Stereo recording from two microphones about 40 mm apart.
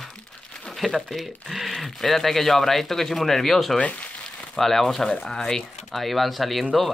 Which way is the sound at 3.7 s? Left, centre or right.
Left.